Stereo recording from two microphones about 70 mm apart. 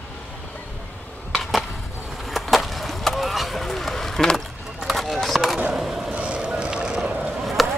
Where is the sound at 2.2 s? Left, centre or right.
Centre.